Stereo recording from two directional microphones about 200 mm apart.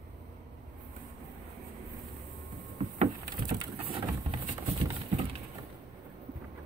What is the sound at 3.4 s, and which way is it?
Pigeon, 25° right (ahead or behind).